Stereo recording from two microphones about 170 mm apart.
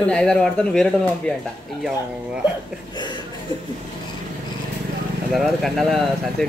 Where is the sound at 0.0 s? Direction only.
5° left (ahead or behind).